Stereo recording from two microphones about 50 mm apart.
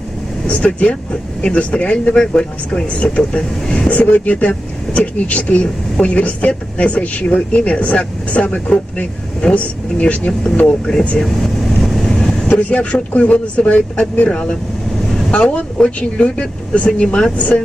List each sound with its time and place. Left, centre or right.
0.5 s speech: left
11.1 s vehicle: centre
12.4 s speech: left
14.3 s speech: centre
15.8 s speech: left